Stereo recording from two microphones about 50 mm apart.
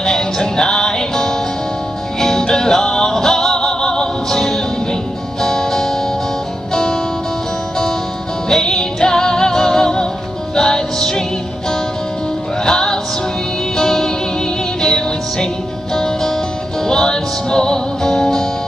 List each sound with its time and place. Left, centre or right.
0.0 s music: centre
8.5 s music: centre
12.6 s music: centre